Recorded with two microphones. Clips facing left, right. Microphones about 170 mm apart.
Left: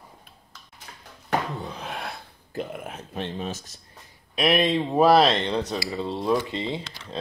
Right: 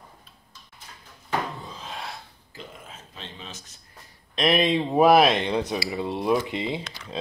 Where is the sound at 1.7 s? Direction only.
65° left (ahead or behind); by 3.8 s 45° left (ahead or behind).